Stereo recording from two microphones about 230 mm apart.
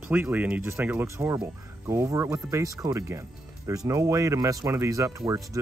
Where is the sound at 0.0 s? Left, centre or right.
Centre.